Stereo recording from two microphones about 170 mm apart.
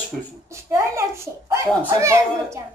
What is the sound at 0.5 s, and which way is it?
A child's voice, 15° right (ahead or behind).